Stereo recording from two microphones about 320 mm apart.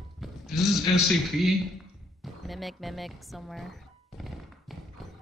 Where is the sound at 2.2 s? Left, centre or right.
Centre.